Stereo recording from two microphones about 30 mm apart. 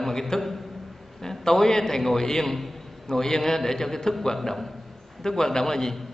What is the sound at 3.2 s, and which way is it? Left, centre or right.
A man's voice, centre.